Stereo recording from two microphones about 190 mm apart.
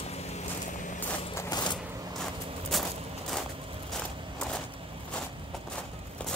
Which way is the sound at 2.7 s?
Centre (ahead or behind).